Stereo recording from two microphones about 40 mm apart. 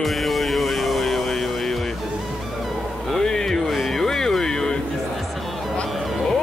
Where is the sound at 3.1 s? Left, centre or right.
Centre.